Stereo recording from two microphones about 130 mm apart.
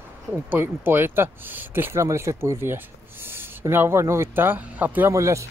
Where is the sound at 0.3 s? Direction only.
15° right (ahead or behind).